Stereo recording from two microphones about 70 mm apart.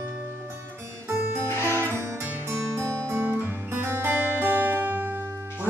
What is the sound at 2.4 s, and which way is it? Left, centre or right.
Music, right.